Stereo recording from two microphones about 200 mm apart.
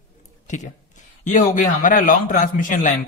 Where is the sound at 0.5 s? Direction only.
40° left (ahead or behind).